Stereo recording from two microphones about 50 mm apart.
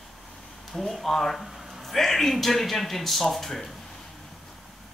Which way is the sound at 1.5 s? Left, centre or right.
Centre.